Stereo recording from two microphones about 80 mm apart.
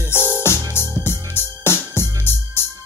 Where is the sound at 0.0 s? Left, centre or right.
Left.